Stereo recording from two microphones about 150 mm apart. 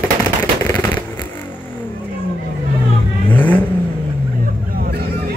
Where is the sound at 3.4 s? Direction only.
10° left (ahead or behind).